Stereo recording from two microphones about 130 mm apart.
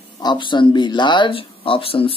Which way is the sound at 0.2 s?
35° left (ahead or behind).